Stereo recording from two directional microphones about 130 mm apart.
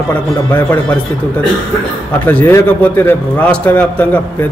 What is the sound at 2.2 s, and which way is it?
A man's voice, 15° left (ahead or behind).